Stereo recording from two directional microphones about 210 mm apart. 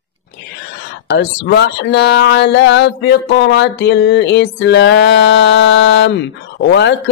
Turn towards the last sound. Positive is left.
turn(degrees=55)  # may be behind; listen again after turning